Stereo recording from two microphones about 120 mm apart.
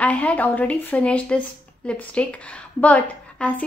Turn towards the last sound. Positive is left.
turn(degrees=10)  # may be behind; listen again after turning